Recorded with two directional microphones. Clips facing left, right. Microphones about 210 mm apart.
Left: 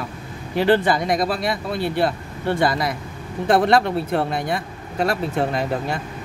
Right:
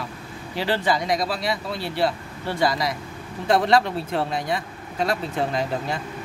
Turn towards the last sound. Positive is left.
turn(degrees=55)  # may be behind; listen again after turning